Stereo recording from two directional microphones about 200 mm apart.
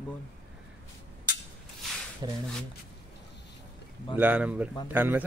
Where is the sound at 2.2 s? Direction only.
20° right (ahead or behind).